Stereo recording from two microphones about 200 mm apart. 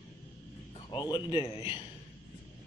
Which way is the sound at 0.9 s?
20° left (ahead or behind).